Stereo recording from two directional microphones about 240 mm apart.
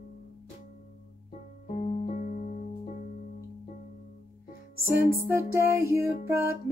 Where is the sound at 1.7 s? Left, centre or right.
Left.